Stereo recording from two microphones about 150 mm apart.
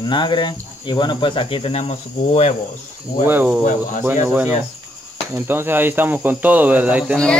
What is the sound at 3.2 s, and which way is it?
Speech, 10° right (ahead or behind).